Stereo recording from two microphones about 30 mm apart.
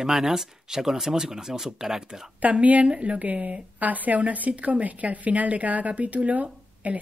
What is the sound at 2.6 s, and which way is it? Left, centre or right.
A woman's voice, right.